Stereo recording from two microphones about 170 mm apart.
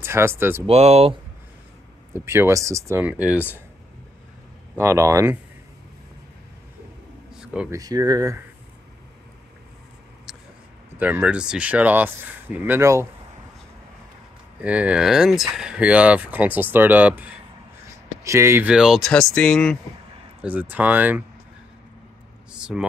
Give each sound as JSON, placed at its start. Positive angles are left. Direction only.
{"t": 0.0, "sound": "speech", "side_deg": -15}
{"t": 0.7, "sound": "speech", "side_deg": -40}
{"t": 2.1, "sound": "speech", "side_deg": -15}
{"t": 4.7, "sound": "speech", "side_deg": -15}
{"t": 7.3, "sound": "a sound", "side_deg": -5}
{"t": 7.7, "sound": "speech", "side_deg": -20}
{"t": 11.0, "sound": "speech", "side_deg": -10}
{"t": 14.6, "sound": "speech", "side_deg": -10}
{"t": 20.4, "sound": "speech", "side_deg": -10}
{"t": 22.5, "sound": "a sound", "side_deg": -5}